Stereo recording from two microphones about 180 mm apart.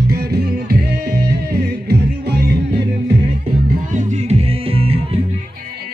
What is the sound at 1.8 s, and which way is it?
Music, 65° right (ahead or behind).